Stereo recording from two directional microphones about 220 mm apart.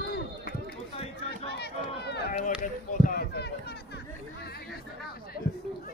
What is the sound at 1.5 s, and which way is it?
Run, 50° left (ahead or behind).